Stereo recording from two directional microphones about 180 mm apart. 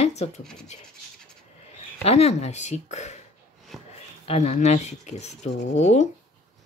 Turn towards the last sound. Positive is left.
turn(degrees=40)  # may be behind; listen again after turning